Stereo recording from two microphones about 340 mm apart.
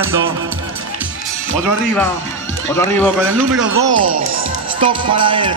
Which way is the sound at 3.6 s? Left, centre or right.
Right.